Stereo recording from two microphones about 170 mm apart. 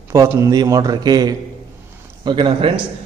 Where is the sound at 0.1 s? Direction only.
15° right (ahead or behind).